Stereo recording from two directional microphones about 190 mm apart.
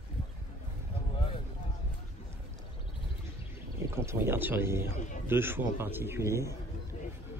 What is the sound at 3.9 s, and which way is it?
Speech, 10° right (ahead or behind).